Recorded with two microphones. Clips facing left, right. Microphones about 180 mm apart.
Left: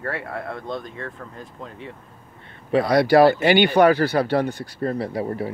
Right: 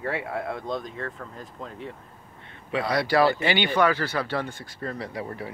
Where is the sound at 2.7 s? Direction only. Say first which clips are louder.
Left 8 dB; 40° left (ahead or behind).